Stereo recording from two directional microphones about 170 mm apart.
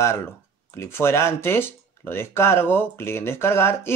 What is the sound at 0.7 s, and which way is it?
Speech, 15° left (ahead or behind).